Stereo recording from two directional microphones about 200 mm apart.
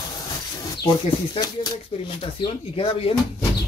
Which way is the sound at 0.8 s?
25° left (ahead or behind).